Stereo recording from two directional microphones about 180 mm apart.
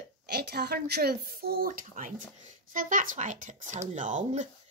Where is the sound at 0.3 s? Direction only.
60° right (ahead or behind); by 4.5 s 40° right (ahead or behind).